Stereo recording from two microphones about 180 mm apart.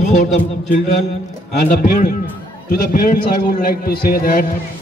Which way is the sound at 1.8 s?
50° left (ahead or behind).